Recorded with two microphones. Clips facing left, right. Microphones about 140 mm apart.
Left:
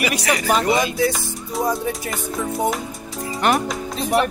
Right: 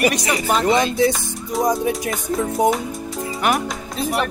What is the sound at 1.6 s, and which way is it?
Speech, 15° right (ahead or behind).